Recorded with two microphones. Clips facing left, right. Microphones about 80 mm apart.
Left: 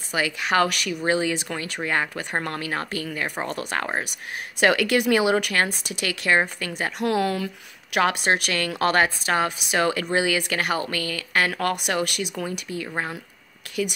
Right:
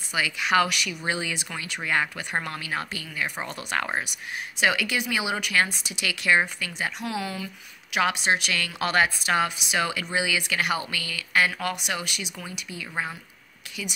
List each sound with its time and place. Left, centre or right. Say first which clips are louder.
0.1 s speech: left 1 dB; left
4.6 s speech: left 5 dB; left
8.0 s speech: left 2 dB; left
12.4 s speech: left 7 dB; left
13.7 s speech: left 10 dB; left